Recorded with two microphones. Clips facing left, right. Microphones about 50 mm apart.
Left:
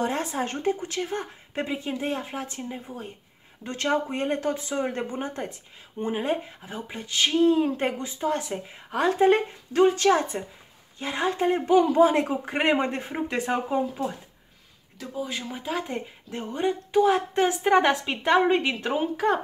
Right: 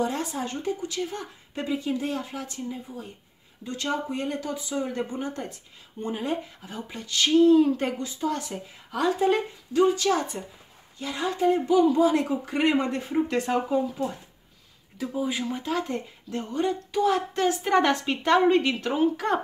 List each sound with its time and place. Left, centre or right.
0.0 s speech: left
10.1 s speech: left
15.0 s speech: centre
15.4 s speech: centre